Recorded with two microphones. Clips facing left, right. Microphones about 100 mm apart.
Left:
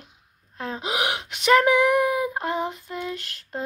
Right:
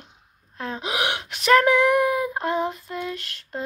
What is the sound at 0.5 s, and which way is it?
Speech, 30° left (ahead or behind).